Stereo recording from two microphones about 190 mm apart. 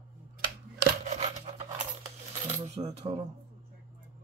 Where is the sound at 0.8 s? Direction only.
40° right (ahead or behind).